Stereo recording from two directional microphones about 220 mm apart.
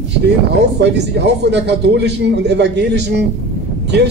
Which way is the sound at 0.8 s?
50° right (ahead or behind).